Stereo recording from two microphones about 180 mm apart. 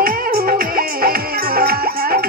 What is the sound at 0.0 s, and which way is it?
Music, 55° right (ahead or behind).